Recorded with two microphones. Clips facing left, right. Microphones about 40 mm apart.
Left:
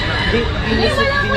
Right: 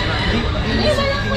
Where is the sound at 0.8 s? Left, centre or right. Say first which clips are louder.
Left 1 dB; left.